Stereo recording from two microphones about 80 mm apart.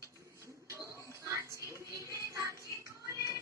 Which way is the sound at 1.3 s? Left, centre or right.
Right.